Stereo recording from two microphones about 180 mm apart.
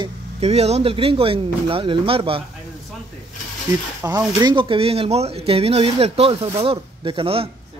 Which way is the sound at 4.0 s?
15° right (ahead or behind).